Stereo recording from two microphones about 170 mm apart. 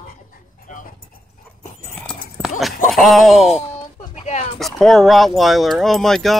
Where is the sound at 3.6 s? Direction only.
40° left (ahead or behind).